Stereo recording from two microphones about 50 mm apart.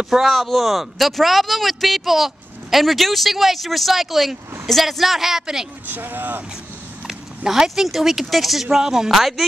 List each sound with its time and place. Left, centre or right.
0.1 s speech: centre
5.9 s speech: right
7.1 s speech: centre